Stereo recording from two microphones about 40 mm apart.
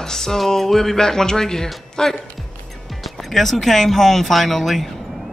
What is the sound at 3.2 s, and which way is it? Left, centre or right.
Speech, centre.